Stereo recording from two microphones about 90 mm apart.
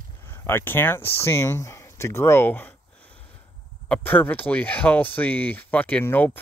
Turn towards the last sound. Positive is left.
turn(degrees=20)  # may be behind; listen again after turning